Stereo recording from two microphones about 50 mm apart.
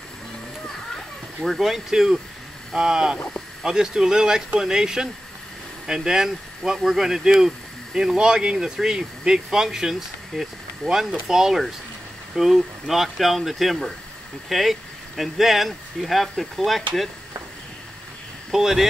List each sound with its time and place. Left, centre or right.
1.4 s speech: centre
18.5 s speech: centre